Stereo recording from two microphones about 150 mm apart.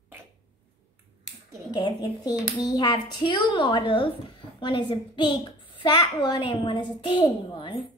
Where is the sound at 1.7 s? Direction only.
30° left (ahead or behind).